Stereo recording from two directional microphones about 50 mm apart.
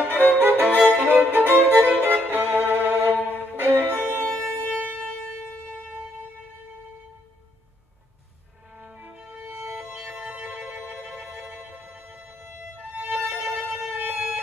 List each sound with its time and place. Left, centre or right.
0.1 s violin: right
4.7 s music: right
8.8 s music: right
12.9 s violin: right